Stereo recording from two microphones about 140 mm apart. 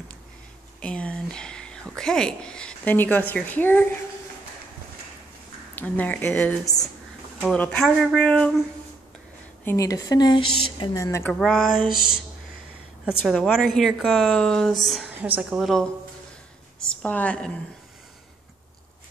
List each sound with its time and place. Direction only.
0.7 s a sound: 10° left (ahead or behind)
5.8 s speech: 10° left (ahead or behind)
7.5 s speech: 10° left (ahead or behind)
7.8 s a woman's voice: centre (ahead or behind)
9.7 s speech: 25° left (ahead or behind)
11.1 s speech: 20° left (ahead or behind)
11.3 s a woman's voice: 5° left (ahead or behind)
11.9 s a sound: 30° right (ahead or behind)
13.0 s a woman's voice: centre (ahead or behind)
15.2 s speech: 10° right (ahead or behind)
16.9 s speech: 10° left (ahead or behind)